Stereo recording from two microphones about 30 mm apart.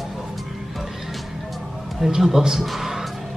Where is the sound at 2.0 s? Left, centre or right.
Centre.